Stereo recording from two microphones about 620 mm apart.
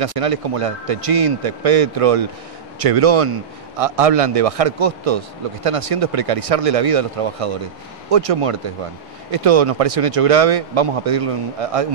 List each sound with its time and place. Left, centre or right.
0.0 s a man's voice: right